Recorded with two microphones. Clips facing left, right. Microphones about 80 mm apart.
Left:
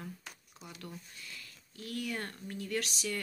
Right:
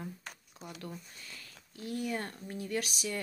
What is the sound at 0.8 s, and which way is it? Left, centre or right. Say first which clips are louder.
Speech: right 1 dB; right.